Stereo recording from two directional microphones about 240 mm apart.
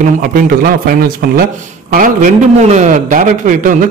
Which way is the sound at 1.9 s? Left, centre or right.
Right.